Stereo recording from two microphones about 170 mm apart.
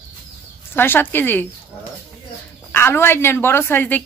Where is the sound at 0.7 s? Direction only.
15° left (ahead or behind).